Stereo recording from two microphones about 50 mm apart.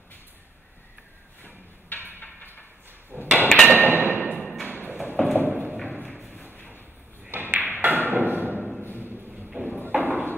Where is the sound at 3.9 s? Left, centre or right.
Right.